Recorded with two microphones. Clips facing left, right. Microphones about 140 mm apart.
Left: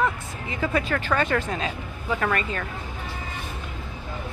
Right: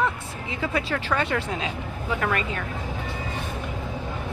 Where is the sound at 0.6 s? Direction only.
5° right (ahead or behind).